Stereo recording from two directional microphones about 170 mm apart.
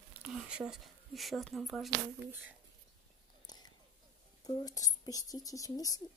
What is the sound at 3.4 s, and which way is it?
Chewing, 25° left (ahead or behind).